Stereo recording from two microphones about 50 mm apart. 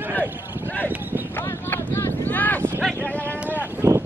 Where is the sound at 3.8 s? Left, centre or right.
Right.